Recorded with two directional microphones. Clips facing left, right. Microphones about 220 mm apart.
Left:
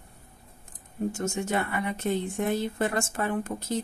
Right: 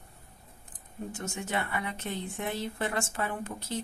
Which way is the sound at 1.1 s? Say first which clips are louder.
Left 3 dB; 45° left (ahead or behind).